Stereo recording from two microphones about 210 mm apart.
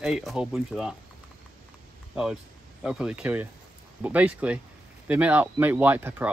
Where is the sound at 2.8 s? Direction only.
5° right (ahead or behind).